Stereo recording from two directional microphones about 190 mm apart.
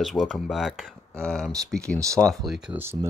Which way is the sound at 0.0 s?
Centre (ahead or behind).